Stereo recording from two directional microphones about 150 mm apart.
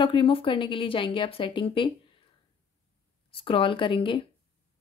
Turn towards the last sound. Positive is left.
turn(degrees=35)  # may be behind; listen again after turning